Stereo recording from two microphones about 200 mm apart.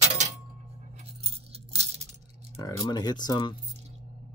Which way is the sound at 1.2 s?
30° right (ahead or behind).